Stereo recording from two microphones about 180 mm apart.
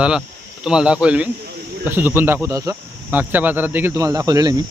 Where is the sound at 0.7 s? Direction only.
5° right (ahead or behind); by 4.6 s 20° right (ahead or behind).